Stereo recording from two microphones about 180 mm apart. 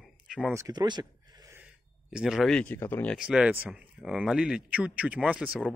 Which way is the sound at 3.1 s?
5° right (ahead or behind).